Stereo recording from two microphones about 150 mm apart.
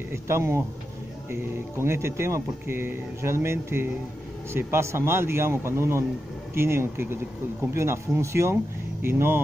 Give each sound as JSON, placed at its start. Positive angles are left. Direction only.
{"t": 0.1, "sound": "speech", "side_deg": -15}